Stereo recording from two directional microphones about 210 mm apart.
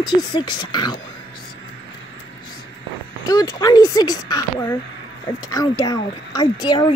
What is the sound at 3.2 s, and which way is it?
Speech, 20° left (ahead or behind).